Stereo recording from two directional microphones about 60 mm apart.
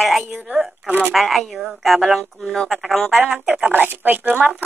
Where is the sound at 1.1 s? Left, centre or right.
Centre.